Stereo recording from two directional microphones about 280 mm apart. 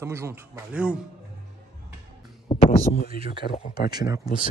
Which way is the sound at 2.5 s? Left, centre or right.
Centre.